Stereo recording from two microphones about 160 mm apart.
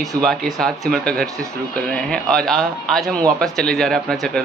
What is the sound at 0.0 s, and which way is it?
Speech, centre (ahead or behind).